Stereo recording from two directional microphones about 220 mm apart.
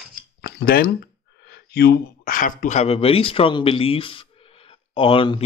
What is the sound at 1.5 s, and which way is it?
Speech, 45° left (ahead or behind).